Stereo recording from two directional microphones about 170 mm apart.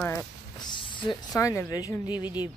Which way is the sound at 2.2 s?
10° right (ahead or behind).